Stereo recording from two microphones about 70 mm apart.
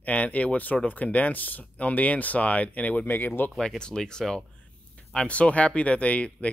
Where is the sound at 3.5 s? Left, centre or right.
Centre.